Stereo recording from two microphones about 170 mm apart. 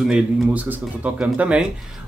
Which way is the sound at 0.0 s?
5° right (ahead or behind).